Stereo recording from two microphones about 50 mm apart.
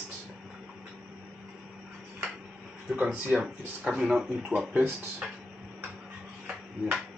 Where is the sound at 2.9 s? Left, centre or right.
Right.